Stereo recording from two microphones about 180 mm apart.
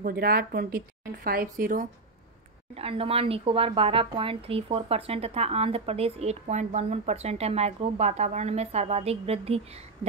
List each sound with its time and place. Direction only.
0.0 s speech: 60° right (ahead or behind)
2.7 s speech: 30° right (ahead or behind)